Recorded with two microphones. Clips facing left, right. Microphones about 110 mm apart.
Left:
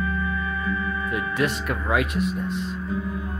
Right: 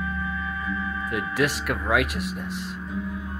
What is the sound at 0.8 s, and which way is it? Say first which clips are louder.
Speech: left 2 dB; centre (ahead or behind).